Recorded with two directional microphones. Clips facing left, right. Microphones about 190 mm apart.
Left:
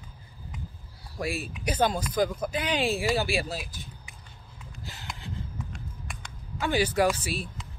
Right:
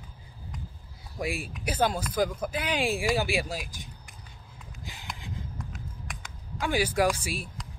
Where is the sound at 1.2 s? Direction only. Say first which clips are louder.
Left 1 dB; 15° right (ahead or behind).